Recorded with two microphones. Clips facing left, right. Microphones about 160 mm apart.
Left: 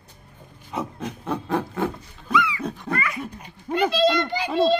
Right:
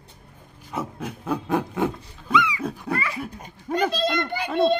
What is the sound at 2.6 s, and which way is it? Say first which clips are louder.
Dog: right 1 dB; 5° right (ahead or behind).